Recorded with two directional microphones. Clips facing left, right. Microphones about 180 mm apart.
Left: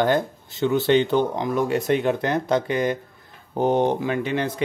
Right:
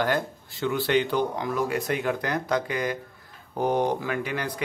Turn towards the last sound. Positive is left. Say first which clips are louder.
# left 5 dB
turn(degrees=25)  # may be behind; listen again after turning